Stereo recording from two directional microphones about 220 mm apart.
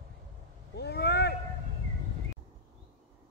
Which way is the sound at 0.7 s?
50° left (ahead or behind).